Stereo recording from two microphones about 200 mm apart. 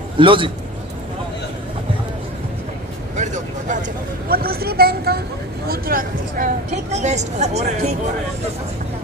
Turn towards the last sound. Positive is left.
turn(degrees=-35)  # may be behind; listen again after turning